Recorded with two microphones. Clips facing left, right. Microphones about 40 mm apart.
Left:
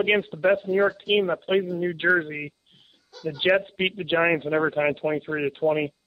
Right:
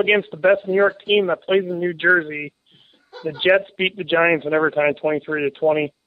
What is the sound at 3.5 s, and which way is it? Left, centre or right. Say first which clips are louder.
Speech: right 5 dB; centre.